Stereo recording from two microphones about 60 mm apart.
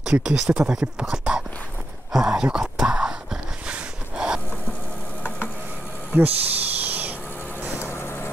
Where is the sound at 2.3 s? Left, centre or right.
Centre.